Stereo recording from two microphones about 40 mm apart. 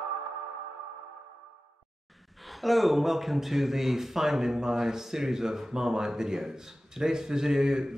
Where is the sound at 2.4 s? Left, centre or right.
Centre.